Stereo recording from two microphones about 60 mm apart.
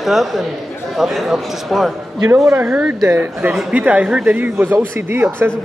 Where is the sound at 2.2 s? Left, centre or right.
Right.